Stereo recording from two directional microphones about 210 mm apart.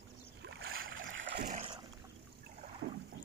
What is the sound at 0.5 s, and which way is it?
Boat, 45° right (ahead or behind).